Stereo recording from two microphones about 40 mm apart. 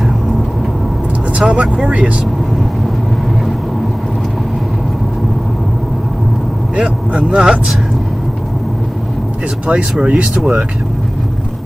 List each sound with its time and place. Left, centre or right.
1.4 s speech: right
7.2 s speech: centre
9.7 s speech: right